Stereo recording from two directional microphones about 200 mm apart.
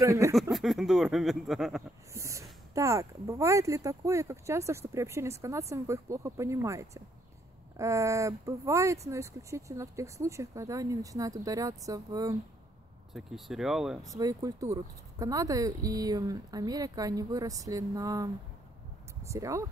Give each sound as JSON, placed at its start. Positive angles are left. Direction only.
{"t": 0.0, "sound": "speech", "side_deg": -15}
{"t": 0.3, "sound": "speech", "side_deg": 0}
{"t": 2.1, "sound": "speech", "side_deg": -15}
{"t": 13.1, "sound": "speech", "side_deg": 0}
{"t": 14.1, "sound": "speech", "side_deg": -15}